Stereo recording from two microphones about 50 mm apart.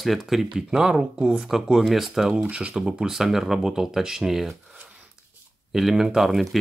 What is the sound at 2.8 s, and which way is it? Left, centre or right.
Speech, centre.